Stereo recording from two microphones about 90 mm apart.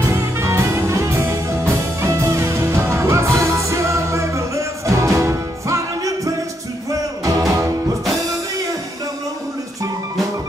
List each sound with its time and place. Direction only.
0.1 s music: 30° right (ahead or behind)